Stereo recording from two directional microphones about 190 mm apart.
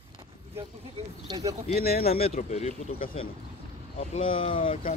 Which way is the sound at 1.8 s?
50° left (ahead or behind).